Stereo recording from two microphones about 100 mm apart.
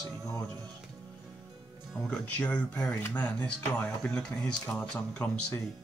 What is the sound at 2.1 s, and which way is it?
Speech, 15° left (ahead or behind).